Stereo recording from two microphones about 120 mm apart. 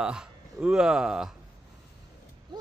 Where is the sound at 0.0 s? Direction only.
5° right (ahead or behind).